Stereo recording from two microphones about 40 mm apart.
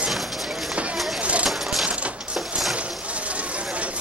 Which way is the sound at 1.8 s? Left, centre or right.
Right.